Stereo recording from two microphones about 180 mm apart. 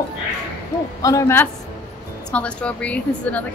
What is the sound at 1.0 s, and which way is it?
A woman's voice, 15° left (ahead or behind).